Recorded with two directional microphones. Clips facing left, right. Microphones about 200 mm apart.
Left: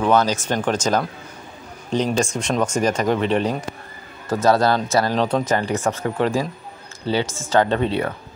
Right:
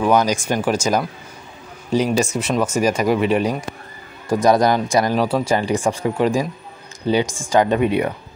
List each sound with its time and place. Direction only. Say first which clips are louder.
0.0 s speech: right 1 dB; 15° right (ahead or behind)